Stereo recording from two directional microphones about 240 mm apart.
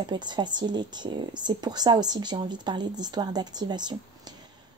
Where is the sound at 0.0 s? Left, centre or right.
Centre.